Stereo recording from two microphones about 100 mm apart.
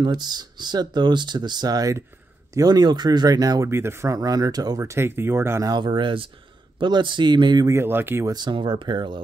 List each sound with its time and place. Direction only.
0.0 s speech: 45° right (ahead or behind)
3.7 s speech: 25° right (ahead or behind)
4.9 s speech: 25° right (ahead or behind)
5.7 s speech: 50° right (ahead or behind)
7.6 s speech: 25° right (ahead or behind)
8.3 s speech: 45° right (ahead or behind)